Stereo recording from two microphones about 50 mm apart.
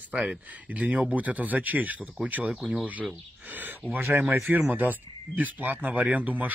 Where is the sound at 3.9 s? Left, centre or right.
Right.